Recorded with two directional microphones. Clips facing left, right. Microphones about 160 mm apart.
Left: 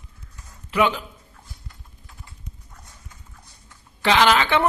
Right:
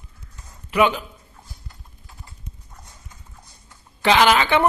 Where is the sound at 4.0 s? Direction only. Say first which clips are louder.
Right 1 dB; 15° right (ahead or behind).